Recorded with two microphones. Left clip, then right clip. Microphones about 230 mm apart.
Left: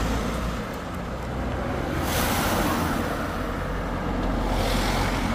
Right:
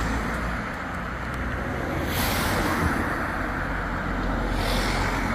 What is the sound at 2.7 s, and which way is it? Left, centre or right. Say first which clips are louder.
Vehicle: right 1 dB; left.